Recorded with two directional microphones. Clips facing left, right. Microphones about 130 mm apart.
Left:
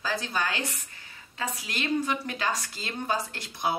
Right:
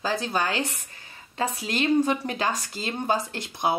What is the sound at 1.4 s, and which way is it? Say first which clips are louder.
A woman's voice: right 7 dB; 40° right (ahead or behind).